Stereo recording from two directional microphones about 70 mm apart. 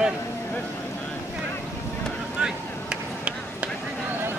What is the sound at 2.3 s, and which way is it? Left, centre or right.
Vehicle, centre.